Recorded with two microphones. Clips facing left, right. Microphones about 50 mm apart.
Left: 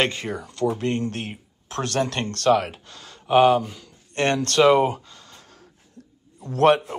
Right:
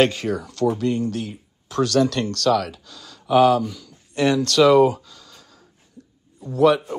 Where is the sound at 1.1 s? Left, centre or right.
Left.